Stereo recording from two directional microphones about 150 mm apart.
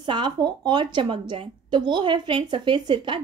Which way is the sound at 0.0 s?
30° right (ahead or behind).